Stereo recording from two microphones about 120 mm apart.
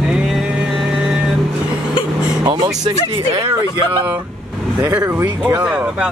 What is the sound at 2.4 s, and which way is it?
Speech, 35° right (ahead or behind).